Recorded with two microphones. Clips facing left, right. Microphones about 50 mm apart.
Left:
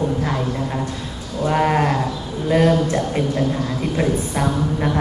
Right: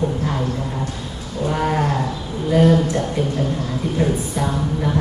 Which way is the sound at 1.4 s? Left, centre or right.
Left.